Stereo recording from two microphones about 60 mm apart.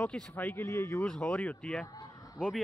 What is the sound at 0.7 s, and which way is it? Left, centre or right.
Speech, left.